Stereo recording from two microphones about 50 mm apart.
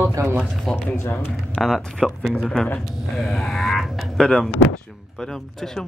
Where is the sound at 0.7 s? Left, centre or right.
Left.